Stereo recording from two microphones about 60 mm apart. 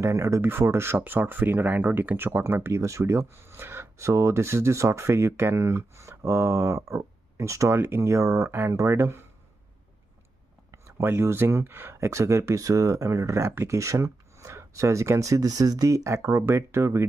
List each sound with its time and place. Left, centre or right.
0.0 s speech: right
0.4 s speech: right
2.8 s speech: right
8.5 s speech: right
10.7 s speech: right
12.0 s speech: right
13.5 s speech: right
13.7 s speech: right